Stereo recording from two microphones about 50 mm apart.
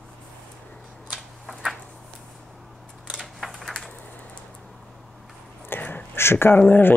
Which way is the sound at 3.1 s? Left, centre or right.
Centre.